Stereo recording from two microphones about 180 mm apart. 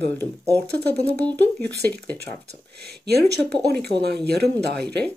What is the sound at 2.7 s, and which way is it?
Speech, 65° right (ahead or behind).